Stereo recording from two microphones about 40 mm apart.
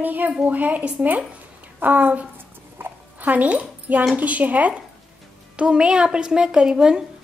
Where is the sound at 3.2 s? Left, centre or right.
Right.